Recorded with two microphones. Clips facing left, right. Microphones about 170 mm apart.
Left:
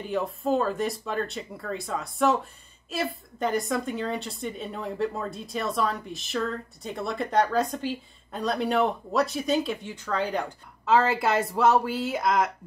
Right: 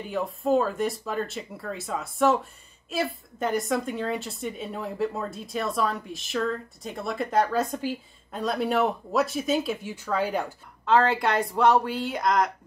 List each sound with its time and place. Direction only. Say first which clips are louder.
0.1 s a woman's voice: right 2 dB; centre (ahead or behind)
10.9 s a woman's voice: even; 5° left (ahead or behind)